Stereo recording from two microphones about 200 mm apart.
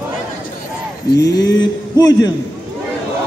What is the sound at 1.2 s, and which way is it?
Speech, 20° left (ahead or behind).